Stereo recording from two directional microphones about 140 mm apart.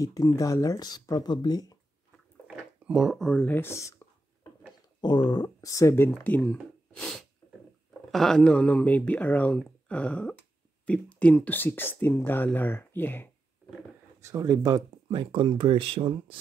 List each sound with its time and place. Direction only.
0.0 s speech: 25° left (ahead or behind)
2.4 s a sound: 5° right (ahead or behind); by 4.5 s 20° left (ahead or behind)
5.0 s speech: 30° left (ahead or behind); by 13.3 s 15° left (ahead or behind)
14.2 s speech: 25° right (ahead or behind)